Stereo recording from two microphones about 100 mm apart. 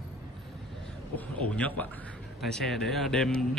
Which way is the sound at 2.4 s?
5° left (ahead or behind).